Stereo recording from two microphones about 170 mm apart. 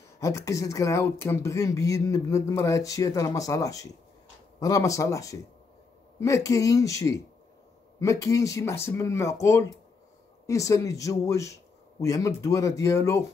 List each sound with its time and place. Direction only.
0.2 s speech: 20° left (ahead or behind)